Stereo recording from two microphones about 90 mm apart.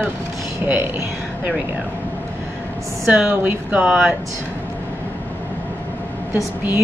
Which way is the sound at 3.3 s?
15° right (ahead or behind).